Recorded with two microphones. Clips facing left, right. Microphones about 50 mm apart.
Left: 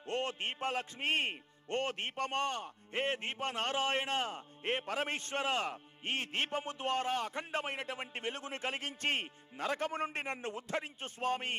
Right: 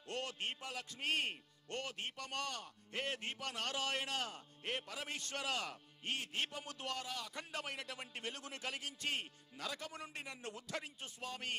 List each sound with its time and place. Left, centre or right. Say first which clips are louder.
0.0 s a man's voice: left 6 dB; left